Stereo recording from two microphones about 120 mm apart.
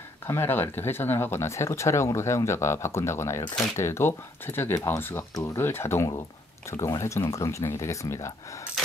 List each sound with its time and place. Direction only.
0.3 s speech: 20° left (ahead or behind)
5.3 s speech: 30° left (ahead or behind)
8.8 s mechanisms: centre (ahead or behind)